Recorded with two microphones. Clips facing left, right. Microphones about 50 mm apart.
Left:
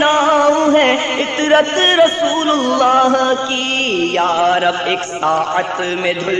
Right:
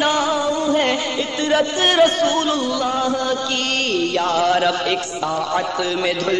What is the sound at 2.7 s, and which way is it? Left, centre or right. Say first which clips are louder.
Speech: left 9 dB; left.